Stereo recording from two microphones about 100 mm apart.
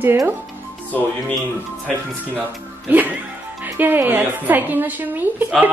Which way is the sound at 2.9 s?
20° right (ahead or behind).